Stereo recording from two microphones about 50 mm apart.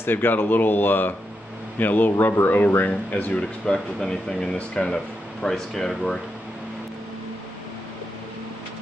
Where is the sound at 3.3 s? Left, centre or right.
Centre.